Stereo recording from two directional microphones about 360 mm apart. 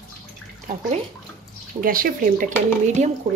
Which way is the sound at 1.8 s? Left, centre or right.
Right.